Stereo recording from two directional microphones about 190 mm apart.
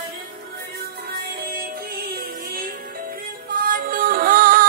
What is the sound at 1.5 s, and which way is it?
Music, 50° right (ahead or behind).